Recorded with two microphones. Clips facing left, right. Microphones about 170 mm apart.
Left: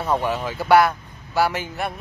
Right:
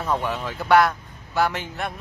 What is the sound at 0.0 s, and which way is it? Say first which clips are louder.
Speech: left 3 dB; 10° left (ahead or behind).